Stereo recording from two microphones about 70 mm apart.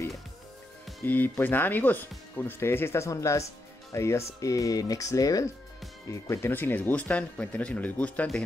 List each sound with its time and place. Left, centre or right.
1.0 s speech: left
3.1 s speech: left
6.5 s speech: left